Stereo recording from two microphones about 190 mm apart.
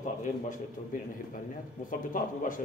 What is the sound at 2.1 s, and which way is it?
Speech, 45° left (ahead or behind).